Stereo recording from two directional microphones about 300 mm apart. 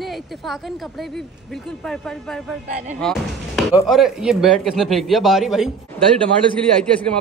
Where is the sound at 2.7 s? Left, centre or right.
Right.